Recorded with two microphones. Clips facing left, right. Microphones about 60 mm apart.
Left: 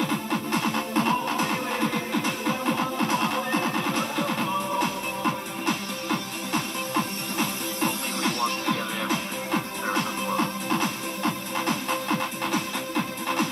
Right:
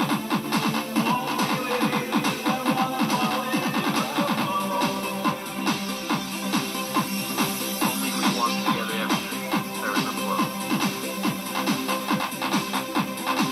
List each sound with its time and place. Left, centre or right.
0.3 s music: left